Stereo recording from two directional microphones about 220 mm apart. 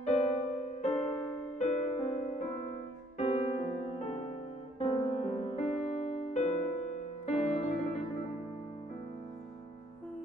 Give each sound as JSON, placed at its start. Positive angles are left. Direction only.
{"t": 0.0, "sound": "music", "side_deg": 30}